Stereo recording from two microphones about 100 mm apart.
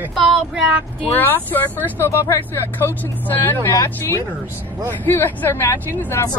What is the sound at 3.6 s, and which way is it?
Speech, 30° left (ahead or behind).